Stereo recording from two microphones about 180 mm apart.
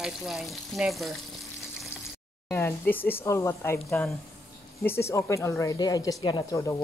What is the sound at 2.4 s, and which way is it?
Speech, 15° left (ahead or behind).